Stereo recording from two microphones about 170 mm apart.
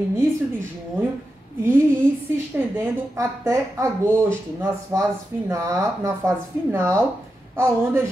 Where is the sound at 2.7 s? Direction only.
15° right (ahead or behind).